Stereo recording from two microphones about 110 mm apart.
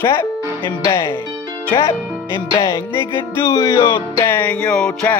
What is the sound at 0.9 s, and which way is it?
Music, 20° left (ahead or behind).